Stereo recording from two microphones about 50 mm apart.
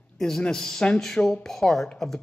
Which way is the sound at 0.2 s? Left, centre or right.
Centre.